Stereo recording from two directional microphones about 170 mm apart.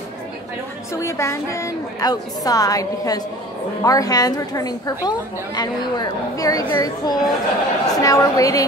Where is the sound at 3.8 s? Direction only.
20° left (ahead or behind).